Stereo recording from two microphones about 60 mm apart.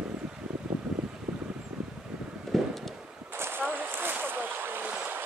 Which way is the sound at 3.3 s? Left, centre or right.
Right.